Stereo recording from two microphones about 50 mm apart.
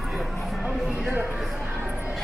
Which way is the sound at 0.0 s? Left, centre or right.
Centre.